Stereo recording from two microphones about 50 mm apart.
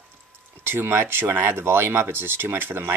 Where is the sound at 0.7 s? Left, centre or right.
Right.